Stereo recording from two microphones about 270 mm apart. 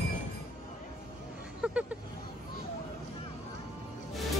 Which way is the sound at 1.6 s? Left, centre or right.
Centre.